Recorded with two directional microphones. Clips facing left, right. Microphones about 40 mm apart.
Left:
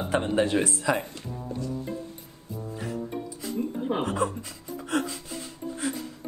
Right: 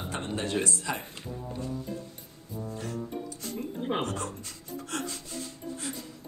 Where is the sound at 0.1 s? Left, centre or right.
Left.